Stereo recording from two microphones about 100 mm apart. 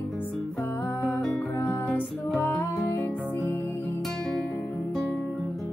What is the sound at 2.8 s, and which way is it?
Music, 25° left (ahead or behind).